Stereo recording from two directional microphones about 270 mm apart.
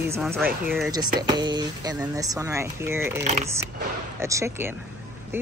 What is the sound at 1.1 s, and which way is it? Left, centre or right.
Speech, centre.